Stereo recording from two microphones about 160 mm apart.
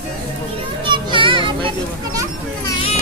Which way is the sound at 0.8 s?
30° right (ahead or behind).